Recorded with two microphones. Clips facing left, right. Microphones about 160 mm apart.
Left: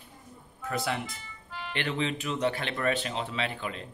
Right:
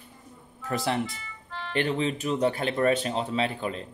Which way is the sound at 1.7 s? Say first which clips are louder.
Right 5 dB; 40° right (ahead or behind).